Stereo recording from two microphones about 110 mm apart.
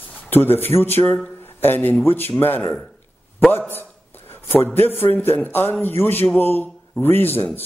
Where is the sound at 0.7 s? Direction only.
20° left (ahead or behind).